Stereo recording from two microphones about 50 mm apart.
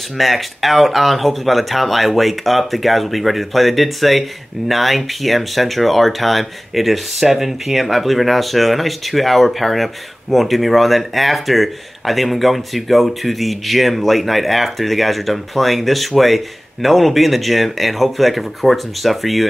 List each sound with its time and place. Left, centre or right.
0.2 s speech: centre